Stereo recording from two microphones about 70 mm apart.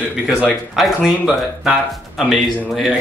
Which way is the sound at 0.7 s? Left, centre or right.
Centre.